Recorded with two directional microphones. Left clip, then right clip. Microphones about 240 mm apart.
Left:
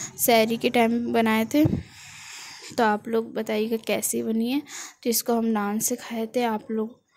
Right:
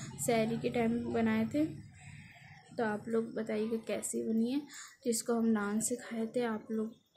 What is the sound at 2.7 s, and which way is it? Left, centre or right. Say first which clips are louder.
A woman's voice: left 12 dB; left.